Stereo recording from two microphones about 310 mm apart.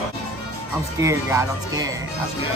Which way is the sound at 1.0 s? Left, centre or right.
Centre.